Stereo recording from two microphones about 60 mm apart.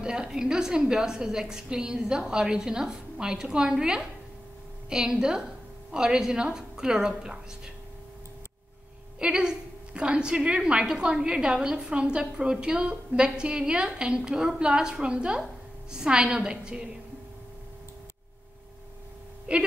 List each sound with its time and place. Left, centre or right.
0.0 s a woman's voice: centre
9.2 s a woman's voice: centre
19.5 s speech: centre